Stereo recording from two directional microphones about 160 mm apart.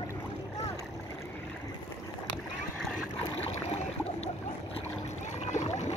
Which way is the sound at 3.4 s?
45° left (ahead or behind).